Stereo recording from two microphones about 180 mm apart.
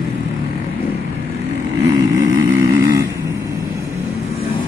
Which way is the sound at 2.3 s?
90° right.